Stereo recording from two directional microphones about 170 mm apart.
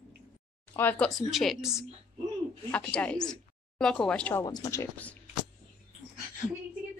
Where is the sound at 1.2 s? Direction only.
Centre (ahead or behind).